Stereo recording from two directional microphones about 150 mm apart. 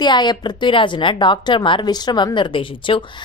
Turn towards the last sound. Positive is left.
turn(degrees=35)  # may be behind; listen again after turning